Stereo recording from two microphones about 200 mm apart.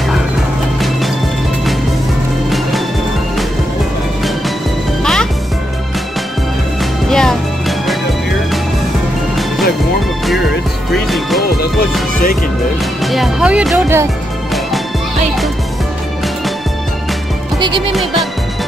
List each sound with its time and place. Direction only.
5.0 s music: centre (ahead or behind)
6.8 s music: 5° left (ahead or behind)
10.9 s music: centre (ahead or behind)
13.0 s music: centre (ahead or behind)
17.6 s music: 25° right (ahead or behind)